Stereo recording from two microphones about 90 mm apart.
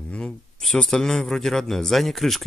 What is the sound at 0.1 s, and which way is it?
A man's voice, 10° left (ahead or behind).